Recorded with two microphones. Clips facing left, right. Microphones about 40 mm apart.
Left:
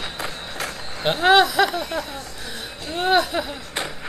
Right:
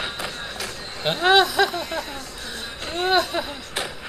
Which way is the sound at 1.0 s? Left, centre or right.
Centre.